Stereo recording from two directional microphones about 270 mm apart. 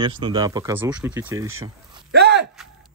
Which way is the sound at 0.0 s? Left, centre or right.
Centre.